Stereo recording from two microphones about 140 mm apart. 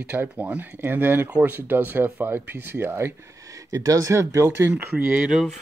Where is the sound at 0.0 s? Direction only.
10° right (ahead or behind).